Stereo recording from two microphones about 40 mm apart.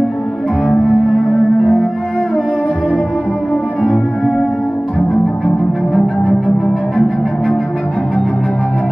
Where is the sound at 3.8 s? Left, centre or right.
Left.